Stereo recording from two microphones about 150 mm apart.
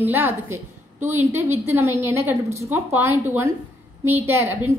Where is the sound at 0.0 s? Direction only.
15° right (ahead or behind).